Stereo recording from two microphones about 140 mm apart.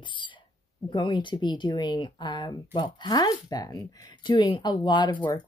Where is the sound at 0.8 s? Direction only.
35° left (ahead or behind).